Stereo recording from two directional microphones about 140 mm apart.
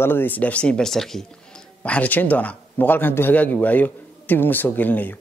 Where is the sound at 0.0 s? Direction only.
15° left (ahead or behind).